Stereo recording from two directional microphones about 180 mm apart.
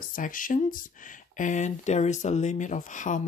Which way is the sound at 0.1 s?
50° left (ahead or behind).